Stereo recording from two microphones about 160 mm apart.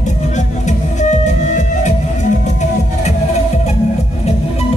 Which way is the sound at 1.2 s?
50° left (ahead or behind).